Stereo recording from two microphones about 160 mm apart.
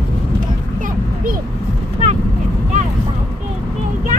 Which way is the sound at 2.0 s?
45° right (ahead or behind).